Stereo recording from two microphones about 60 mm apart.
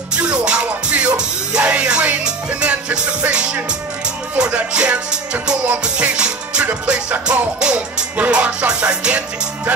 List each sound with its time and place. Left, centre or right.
0.1 s music: centre